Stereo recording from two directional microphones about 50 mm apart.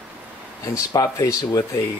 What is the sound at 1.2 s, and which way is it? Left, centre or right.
Speech, left.